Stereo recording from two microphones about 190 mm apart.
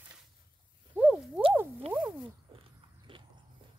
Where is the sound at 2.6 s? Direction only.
25° right (ahead or behind).